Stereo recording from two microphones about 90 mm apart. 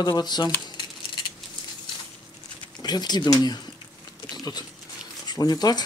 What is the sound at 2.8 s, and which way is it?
Speech, 50° left (ahead or behind).